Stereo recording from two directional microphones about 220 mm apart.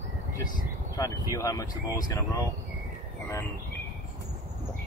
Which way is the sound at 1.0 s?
15° left (ahead or behind).